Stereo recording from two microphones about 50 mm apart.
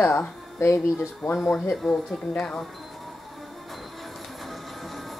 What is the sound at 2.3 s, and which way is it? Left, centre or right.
Speech, centre.